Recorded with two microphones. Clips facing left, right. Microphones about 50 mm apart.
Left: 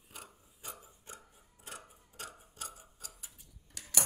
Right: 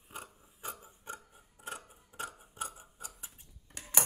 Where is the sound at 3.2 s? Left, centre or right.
Right.